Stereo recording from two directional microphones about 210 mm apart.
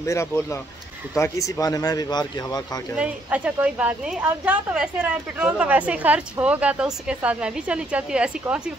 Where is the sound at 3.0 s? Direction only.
5° right (ahead or behind).